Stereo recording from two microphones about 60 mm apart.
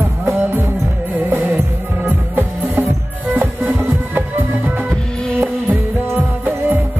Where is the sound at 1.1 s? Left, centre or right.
Right.